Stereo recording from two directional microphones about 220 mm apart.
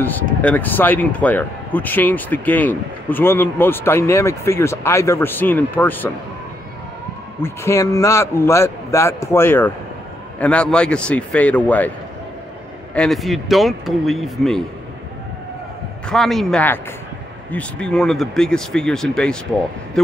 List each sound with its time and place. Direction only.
0.0 s speech: 5° left (ahead or behind)
7.4 s speech: 10° left (ahead or behind)
12.9 s speech: centre (ahead or behind)
16.1 s speech: centre (ahead or behind)